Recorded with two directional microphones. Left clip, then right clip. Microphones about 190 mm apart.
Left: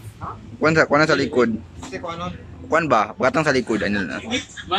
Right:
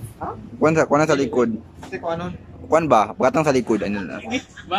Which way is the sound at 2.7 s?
15° right (ahead or behind).